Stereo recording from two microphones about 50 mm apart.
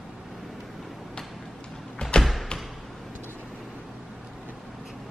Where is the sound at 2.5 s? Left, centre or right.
Centre.